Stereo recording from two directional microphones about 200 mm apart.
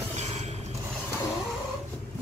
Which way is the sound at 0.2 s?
35° right (ahead or behind).